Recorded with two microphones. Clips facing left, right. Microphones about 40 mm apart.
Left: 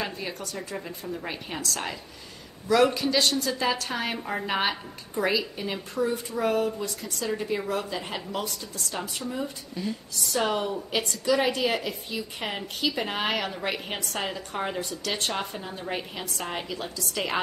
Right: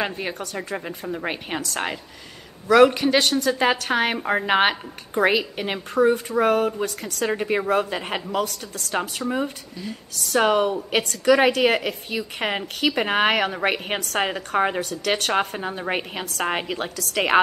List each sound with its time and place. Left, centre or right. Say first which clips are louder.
0.0 s a woman's voice: right 6 dB; right
0.7 s a woman's voice: right 5 dB; right
9.8 s a woman's voice: left 2 dB; centre
10.3 s a woman's voice: right 8 dB; right
15.6 s a woman's voice: right 7 dB; right